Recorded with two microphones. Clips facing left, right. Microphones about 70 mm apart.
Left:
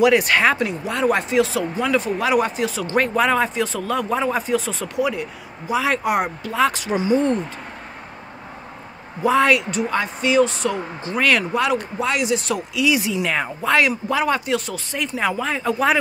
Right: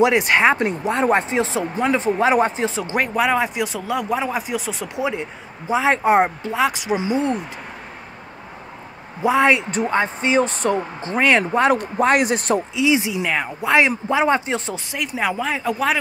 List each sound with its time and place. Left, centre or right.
0.0 s speech: right
0.6 s speech: right
3.0 s speech: centre
4.9 s speech: right
6.5 s speech: centre
9.2 s speech: centre
9.7 s speech: right
11.7 s a man's voice: right
12.7 s speech: right
13.3 s speech: centre
13.8 s speech: right
14.9 s speech: centre